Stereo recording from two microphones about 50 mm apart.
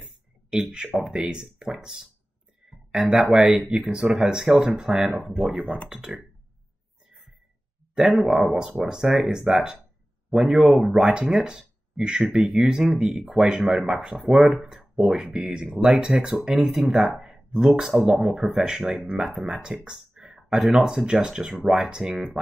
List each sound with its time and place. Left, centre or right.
0.0 s a sound: centre
0.9 s speech: centre
2.6 s a sound: centre
3.2 s speech: centre
5.4 s speech: right
5.9 s speech: centre
8.2 s speech: centre
10.7 s speech: centre
16.6 s speech: centre